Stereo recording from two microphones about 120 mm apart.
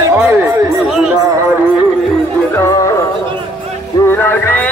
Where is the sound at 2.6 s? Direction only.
30° left (ahead or behind).